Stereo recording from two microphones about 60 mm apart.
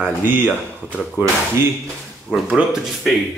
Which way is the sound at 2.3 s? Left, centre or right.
Right.